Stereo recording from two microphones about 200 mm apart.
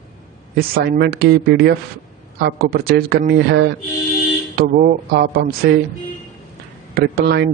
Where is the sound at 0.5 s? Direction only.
50° right (ahead or behind).